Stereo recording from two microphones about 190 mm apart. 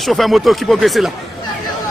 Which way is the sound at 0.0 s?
Centre (ahead or behind).